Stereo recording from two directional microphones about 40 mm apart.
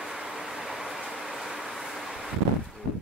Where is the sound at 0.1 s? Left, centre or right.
Centre.